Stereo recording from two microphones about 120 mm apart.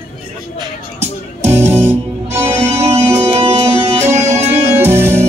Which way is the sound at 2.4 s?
65° right (ahead or behind).